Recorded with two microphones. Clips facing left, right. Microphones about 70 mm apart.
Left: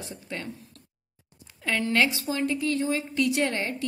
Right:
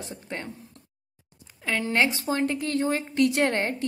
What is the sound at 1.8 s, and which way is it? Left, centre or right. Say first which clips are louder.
Speech: even; right.